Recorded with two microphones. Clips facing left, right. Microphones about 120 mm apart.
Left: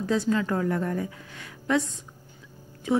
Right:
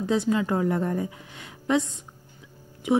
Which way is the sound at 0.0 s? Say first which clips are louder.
Right 1 dB; 20° right (ahead or behind).